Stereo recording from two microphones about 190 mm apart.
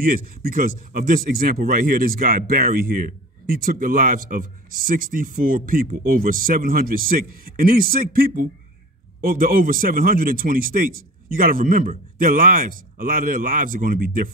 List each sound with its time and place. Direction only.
0.0 s a man's voice: 50° right (ahead or behind)